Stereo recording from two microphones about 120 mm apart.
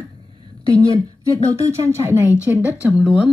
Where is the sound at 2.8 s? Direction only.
10° right (ahead or behind).